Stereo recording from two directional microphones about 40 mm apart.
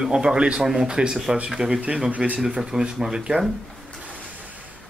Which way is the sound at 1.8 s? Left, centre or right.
Right.